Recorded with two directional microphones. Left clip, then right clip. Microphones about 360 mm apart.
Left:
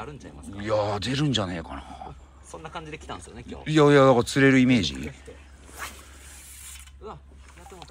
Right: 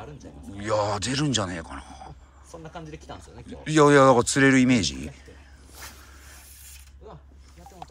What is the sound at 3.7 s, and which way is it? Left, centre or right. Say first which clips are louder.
Speech: right 1 dB; centre.